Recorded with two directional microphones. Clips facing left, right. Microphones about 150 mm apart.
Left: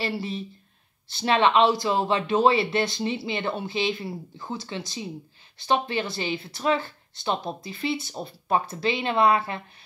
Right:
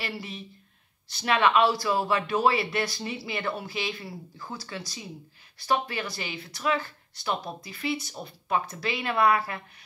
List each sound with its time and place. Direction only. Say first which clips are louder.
0.0 s speech: left 7 dB; 30° left (ahead or behind)